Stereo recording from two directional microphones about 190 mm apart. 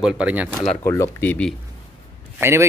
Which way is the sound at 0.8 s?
15° left (ahead or behind).